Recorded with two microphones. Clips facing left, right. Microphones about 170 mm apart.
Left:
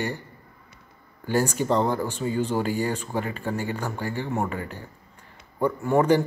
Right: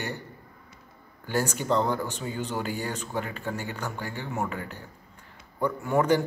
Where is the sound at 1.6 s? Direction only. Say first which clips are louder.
Even; 35° left (ahead or behind).